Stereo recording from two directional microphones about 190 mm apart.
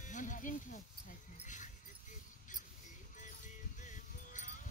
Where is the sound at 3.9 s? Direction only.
40° left (ahead or behind).